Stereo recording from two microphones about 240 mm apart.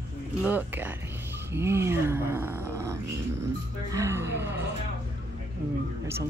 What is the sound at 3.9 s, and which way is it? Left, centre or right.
Speech, centre.